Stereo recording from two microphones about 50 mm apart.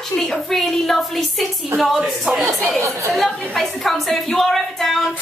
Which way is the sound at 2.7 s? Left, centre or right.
Right.